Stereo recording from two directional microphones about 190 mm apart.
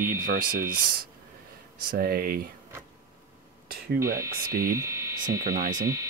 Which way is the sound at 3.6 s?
50° right (ahead or behind).